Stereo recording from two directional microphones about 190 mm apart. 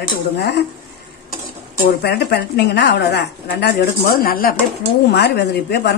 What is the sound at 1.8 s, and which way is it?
Speech, 60° left (ahead or behind).